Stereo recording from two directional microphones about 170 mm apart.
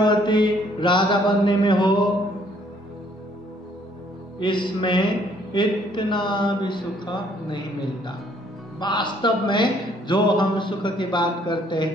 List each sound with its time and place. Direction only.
0.0 s a man's voice: 25° left (ahead or behind)
4.4 s a man's voice: 25° left (ahead or behind)
8.7 s a man's voice: 25° left (ahead or behind)